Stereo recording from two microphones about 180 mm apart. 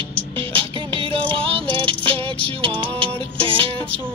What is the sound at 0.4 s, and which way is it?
Music, 30° right (ahead or behind).